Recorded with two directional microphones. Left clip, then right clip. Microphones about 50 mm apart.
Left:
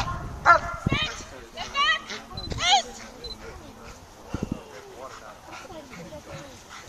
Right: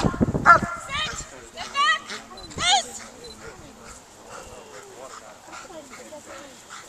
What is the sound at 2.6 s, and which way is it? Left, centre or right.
Dog, centre.